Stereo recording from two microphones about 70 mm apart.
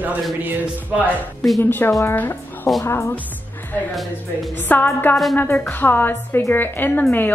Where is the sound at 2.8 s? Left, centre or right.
Left.